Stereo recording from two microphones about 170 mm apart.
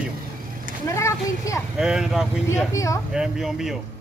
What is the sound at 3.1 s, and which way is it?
Speech, centre (ahead or behind).